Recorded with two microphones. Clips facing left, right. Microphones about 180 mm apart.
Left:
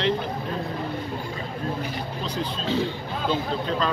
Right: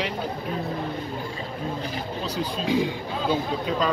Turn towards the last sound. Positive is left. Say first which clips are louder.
# right 1 dB
turn(degrees=-10)  # may be behind; listen again after turning